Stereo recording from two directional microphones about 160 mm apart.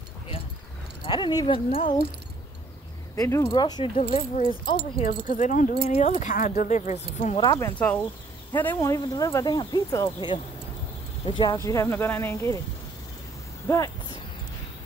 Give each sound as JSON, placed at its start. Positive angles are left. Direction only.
{"t": 1.0, "sound": "speech", "side_deg": 25}
{"t": 3.2, "sound": "speech", "side_deg": 20}
{"t": 5.0, "sound": "speech", "side_deg": 50}
{"t": 7.5, "sound": "speech", "side_deg": 15}
{"t": 11.5, "sound": "speech", "side_deg": 20}
{"t": 13.7, "sound": "speech", "side_deg": 20}